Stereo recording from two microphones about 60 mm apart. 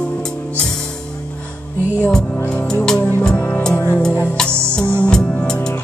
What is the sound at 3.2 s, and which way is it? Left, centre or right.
Music, centre.